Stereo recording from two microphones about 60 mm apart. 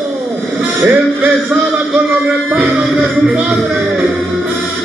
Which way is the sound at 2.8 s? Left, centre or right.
Centre.